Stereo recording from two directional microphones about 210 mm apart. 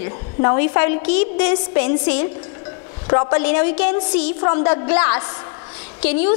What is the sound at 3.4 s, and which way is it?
Speech, 10° left (ahead or behind).